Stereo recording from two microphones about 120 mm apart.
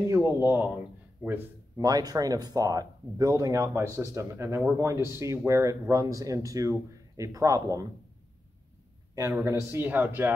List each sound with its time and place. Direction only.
0.0 s a sound: 25° right (ahead or behind)
0.4 s speech: 15° right (ahead or behind)
1.8 s speech: 30° right (ahead or behind)
9.1 s speech: 25° right (ahead or behind)